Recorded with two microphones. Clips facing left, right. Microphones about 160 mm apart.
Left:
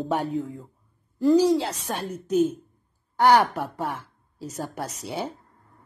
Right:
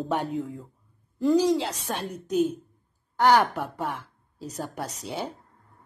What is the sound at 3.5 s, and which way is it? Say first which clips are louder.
A woman's voice: left 1 dB; centre (ahead or behind).